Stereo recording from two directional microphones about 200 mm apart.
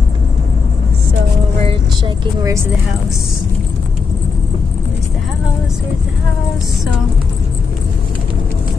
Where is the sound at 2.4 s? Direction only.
15° right (ahead or behind).